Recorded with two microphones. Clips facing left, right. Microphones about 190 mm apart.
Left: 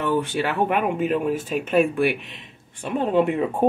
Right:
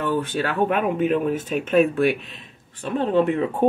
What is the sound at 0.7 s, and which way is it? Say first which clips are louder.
Speech: right 1 dB; 10° left (ahead or behind).